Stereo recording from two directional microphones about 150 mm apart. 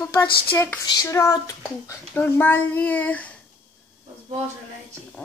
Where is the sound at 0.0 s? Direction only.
15° left (ahead or behind).